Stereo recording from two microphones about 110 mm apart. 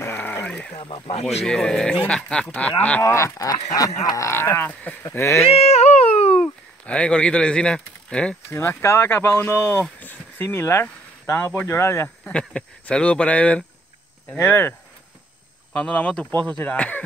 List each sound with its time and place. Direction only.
0.0 s a sound: 20° left (ahead or behind)
0.7 s speech: 55° left (ahead or behind)
1.4 s speech: 5° left (ahead or behind)
3.0 s speech: 25° left (ahead or behind)
5.4 s a sound: 75° left (ahead or behind)
6.4 s speech: 10° left (ahead or behind)
8.5 s speech: 25° left (ahead or behind)
12.3 s speech: 10° left (ahead or behind)